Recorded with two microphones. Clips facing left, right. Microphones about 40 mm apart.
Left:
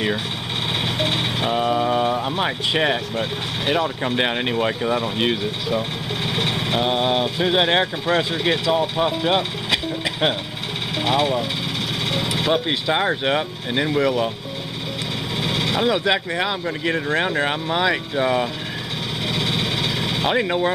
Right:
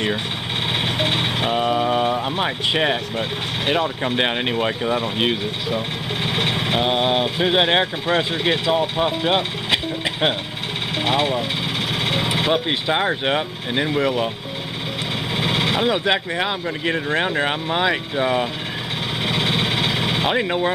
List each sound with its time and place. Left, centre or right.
0.9 s vehicle: centre
2.4 s speech: centre
11.0 s speech: centre
12.9 s speech: centre
15.3 s vehicle: right
15.8 s speech: centre
19.2 s vehicle: right
20.2 s speech: centre